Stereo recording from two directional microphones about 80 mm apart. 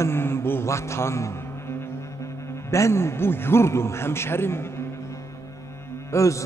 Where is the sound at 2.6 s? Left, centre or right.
Left.